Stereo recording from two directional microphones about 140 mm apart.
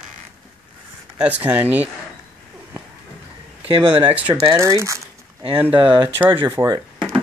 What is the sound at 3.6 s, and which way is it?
Speech, 35° right (ahead or behind).